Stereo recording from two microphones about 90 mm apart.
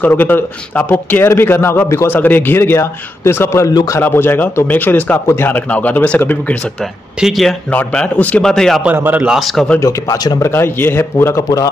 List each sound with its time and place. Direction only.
0.0 s a man's voice: 20° left (ahead or behind); by 4.0 s 40° left (ahead or behind)
4.0 s a man's voice: 25° left (ahead or behind)
5.5 s speech: 15° left (ahead or behind)
6.8 s speech: centre (ahead or behind)
7.7 s speech: 15° left (ahead or behind)
8.9 s speech: 25° right (ahead or behind)
9.2 s speech: 5° right (ahead or behind)
9.8 s speech: 40° left (ahead or behind)
10.4 s a man's voice: 25° left (ahead or behind)